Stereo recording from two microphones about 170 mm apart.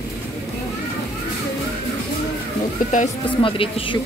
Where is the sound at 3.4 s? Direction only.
30° left (ahead or behind).